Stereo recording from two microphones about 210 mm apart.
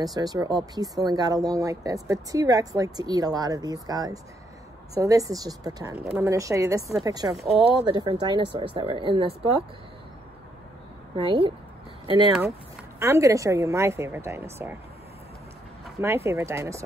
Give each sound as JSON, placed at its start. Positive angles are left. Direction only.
{"t": 0.0, "sound": "speech", "side_deg": -20}
{"t": 5.9, "sound": "speech", "side_deg": -5}
{"t": 11.1, "sound": "speech", "side_deg": -25}
{"t": 12.3, "sound": "speech", "side_deg": -10}
{"t": 16.0, "sound": "speech", "side_deg": -15}